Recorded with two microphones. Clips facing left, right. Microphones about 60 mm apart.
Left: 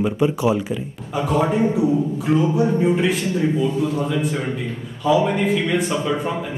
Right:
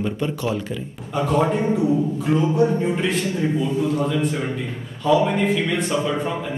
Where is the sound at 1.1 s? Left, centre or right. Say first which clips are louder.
Left 1 dB; centre.